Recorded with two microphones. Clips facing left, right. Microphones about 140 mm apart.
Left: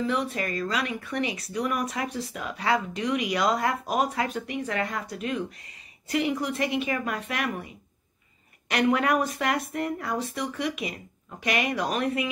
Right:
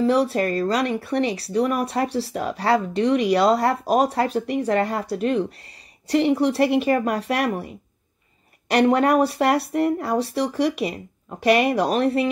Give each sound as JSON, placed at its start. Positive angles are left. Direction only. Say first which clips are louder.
{"t": 0.0, "sound": "speech", "louder": "right 9 dB", "side_deg": -35}